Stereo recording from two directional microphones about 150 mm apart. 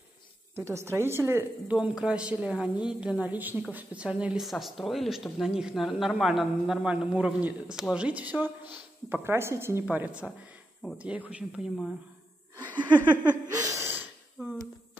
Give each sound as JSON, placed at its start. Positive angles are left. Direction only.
{"t": 0.6, "sound": "a woman's voice", "side_deg": -15}
{"t": 13.7, "sound": "gasp", "side_deg": -15}
{"t": 14.4, "sound": "a sound", "side_deg": -15}